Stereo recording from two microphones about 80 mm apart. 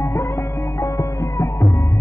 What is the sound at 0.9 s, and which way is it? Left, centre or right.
Music, left.